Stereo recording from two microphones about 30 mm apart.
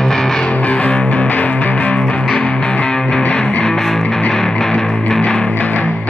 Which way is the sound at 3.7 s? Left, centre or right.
Centre.